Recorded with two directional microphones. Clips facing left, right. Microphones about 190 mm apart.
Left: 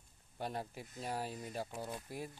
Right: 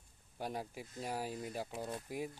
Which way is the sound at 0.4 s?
10° right (ahead or behind).